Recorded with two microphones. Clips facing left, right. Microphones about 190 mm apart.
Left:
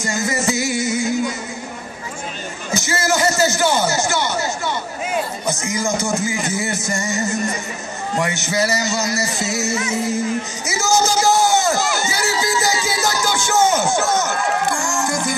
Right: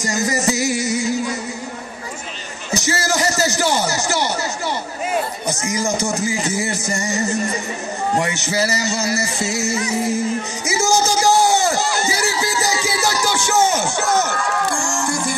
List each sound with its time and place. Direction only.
0.1 s music: 35° right (ahead or behind)
2.7 s a sound: 35° right (ahead or behind)
5.5 s speech: 35° right (ahead or behind)
8.5 s speech: 30° right (ahead or behind)
10.7 s crowd: 30° right (ahead or behind)
14.8 s music: 30° right (ahead or behind)